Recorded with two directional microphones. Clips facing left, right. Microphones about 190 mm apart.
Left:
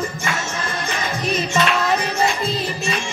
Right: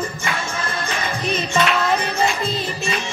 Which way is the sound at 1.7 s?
Centre (ahead or behind).